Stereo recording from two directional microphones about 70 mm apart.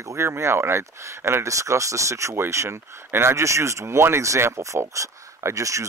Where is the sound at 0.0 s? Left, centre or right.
Right.